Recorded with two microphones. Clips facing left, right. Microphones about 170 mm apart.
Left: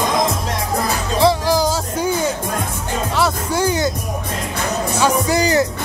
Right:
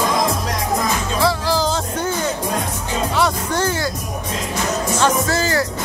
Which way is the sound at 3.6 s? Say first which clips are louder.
Left 5 dB; 15° left (ahead or behind).